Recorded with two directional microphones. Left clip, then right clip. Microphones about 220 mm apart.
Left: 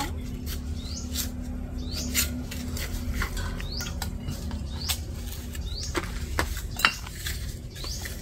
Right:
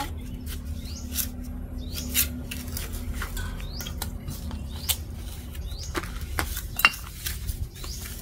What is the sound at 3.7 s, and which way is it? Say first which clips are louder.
Rodents: left 1 dB; 35° right (ahead or behind).